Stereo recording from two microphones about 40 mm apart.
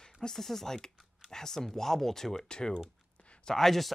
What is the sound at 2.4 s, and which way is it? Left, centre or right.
Speech, left.